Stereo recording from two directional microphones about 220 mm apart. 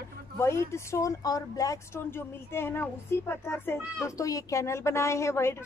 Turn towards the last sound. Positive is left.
turn(degrees=10)  # may be behind; listen again after turning